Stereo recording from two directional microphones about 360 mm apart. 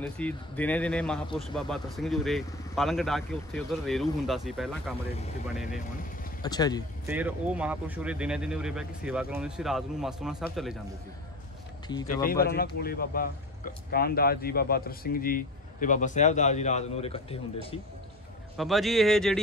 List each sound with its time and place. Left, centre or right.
0.0 s speech: centre
6.4 s speech: centre
7.1 s speech: centre
12.2 s speech: left
18.6 s speech: centre